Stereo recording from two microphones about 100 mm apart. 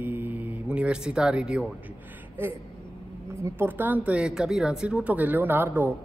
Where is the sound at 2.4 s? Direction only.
20° right (ahead or behind).